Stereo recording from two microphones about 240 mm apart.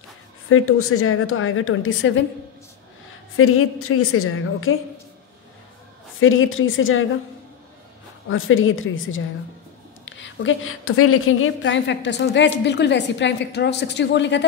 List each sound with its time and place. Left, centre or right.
0.5 s a woman's voice: left
3.3 s a woman's voice: left
6.1 s a woman's voice: left
8.3 s a woman's voice: left